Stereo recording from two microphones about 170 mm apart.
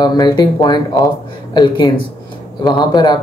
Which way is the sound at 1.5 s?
25° left (ahead or behind).